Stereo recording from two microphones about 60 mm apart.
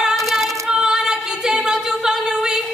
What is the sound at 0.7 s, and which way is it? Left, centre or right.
A capella, centre.